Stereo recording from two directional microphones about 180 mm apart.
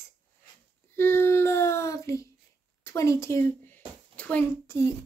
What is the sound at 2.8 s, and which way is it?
A woman's voice, 15° left (ahead or behind).